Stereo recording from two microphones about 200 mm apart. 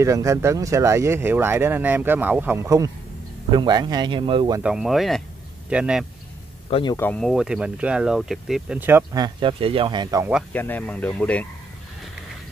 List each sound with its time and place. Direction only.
0.0 s speech: 15° right (ahead or behind)
4.6 s speech: centre (ahead or behind)
6.7 s speech: 20° left (ahead or behind)
7.0 s speech: 5° left (ahead or behind); by 10.2 s 25° right (ahead or behind)
10.5 s speech: 10° left (ahead or behind)